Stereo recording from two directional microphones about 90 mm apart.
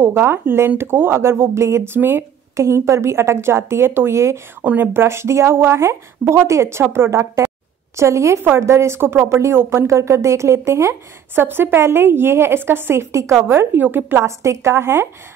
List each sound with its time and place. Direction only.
0.0 s speech: 25° right (ahead or behind)